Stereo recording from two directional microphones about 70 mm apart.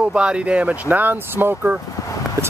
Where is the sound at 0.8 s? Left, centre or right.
Right.